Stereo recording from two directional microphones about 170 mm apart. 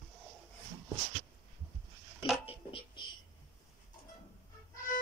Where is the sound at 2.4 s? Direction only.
35° left (ahead or behind).